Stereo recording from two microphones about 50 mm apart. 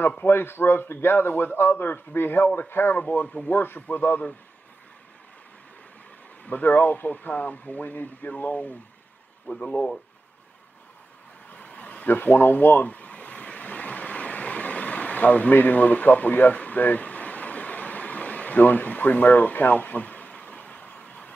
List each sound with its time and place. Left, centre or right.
0.2 s a man's voice: left
6.4 s speech: left
11.5 s vehicle: left
12.1 s a sound: left